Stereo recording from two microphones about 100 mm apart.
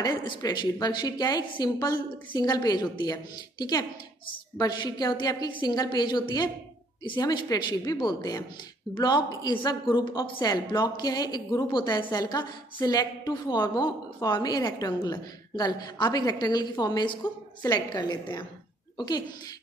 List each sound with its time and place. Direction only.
0.0 s a woman's voice: 45° left (ahead or behind)